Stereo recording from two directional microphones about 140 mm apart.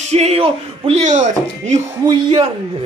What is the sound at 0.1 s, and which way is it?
Speech, 50° right (ahead or behind).